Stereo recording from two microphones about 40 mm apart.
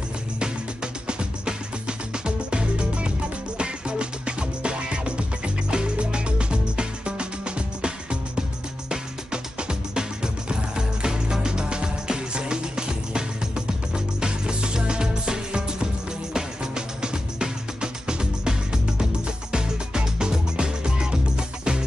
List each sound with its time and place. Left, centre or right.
1.0 s music: right